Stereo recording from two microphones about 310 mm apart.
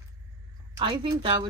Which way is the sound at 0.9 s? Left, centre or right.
Centre.